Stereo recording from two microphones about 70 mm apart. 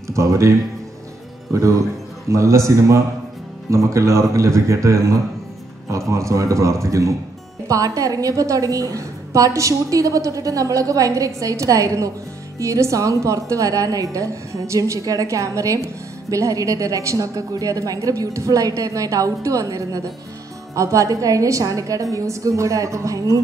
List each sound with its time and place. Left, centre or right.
0.1 s a woman's voice: right